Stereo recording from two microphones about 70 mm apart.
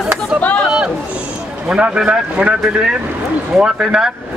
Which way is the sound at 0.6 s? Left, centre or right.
Centre.